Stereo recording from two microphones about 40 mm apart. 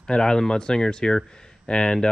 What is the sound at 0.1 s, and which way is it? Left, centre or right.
Speech, centre.